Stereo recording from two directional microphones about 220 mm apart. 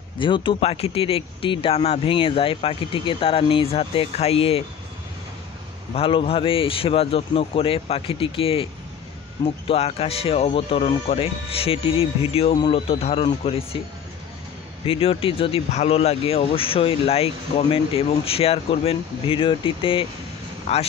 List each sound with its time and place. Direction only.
0.2 s speech: 20° left (ahead or behind)
5.9 s speech: 25° left (ahead or behind)
9.7 s speech: 25° left (ahead or behind)
14.9 s speech: 25° left (ahead or behind)